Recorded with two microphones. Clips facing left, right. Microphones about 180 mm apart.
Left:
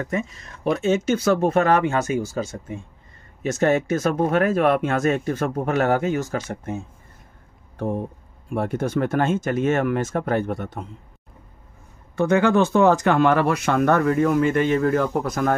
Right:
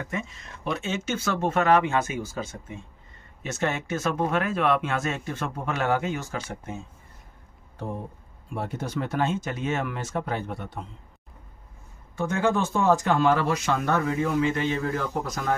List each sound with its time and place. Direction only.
0.7 s speech: 45° left (ahead or behind)
8.5 s speech: 55° left (ahead or behind)
12.2 s speech: 70° left (ahead or behind); by 15.5 s 55° left (ahead or behind)